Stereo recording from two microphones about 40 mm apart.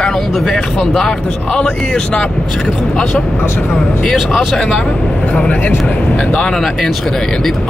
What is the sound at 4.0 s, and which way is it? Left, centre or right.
Speech, centre.